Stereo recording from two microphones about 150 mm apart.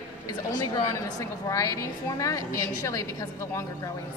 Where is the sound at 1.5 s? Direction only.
20° left (ahead or behind).